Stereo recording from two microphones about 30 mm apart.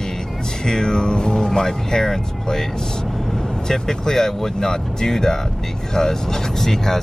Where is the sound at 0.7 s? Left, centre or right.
Left.